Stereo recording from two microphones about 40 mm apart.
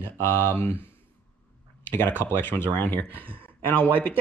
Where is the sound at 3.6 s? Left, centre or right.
Left.